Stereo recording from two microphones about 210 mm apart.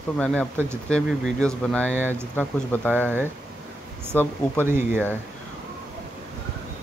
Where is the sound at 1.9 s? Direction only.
10° right (ahead or behind).